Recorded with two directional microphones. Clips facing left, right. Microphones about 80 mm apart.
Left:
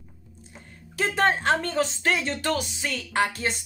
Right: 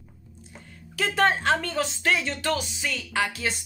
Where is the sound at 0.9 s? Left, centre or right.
Left.